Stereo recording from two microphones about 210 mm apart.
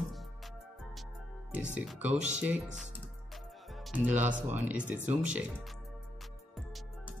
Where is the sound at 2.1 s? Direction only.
35° right (ahead or behind).